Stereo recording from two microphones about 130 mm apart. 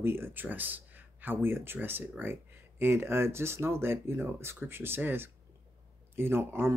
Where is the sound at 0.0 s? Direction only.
15° right (ahead or behind).